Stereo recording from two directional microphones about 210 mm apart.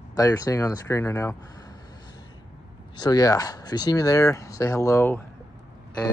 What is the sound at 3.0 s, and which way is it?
Speech, 15° left (ahead or behind).